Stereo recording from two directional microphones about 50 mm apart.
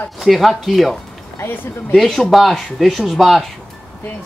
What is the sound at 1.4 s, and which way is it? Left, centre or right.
Speech, left.